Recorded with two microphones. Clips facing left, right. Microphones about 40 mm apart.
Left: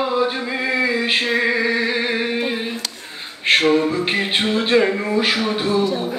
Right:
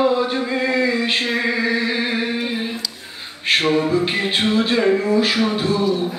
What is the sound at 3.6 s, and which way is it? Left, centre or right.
Music, centre.